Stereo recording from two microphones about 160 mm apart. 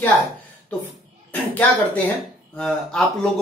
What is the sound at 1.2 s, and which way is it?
A child's voice, 10° left (ahead or behind).